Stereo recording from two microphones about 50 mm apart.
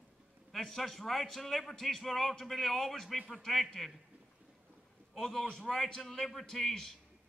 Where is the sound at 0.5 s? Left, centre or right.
Centre.